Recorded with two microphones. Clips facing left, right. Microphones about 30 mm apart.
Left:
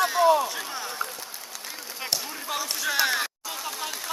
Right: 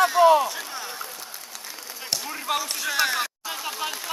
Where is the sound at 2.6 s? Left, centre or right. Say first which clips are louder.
Left 1 dB; centre.